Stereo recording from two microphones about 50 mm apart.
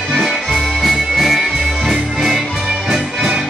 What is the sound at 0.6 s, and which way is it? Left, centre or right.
Music, centre.